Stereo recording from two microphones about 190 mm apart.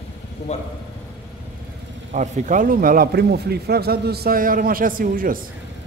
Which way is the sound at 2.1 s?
40° right (ahead or behind).